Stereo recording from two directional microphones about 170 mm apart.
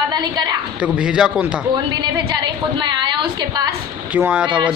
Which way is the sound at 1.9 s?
25° right (ahead or behind).